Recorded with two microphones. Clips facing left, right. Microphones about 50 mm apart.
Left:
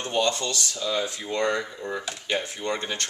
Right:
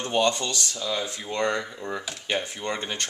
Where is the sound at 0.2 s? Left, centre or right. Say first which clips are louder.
Right 1 dB; right.